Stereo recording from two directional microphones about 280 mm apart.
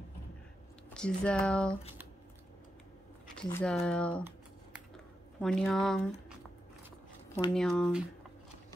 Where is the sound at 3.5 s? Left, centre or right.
Centre.